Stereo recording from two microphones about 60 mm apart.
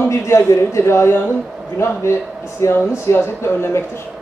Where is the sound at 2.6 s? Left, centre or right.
Left.